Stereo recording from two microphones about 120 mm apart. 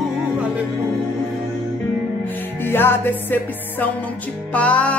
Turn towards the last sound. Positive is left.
turn(degrees=10)  # may be behind; listen again after turning